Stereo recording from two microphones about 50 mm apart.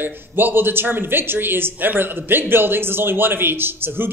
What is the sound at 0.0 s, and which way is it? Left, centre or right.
A man's voice, right.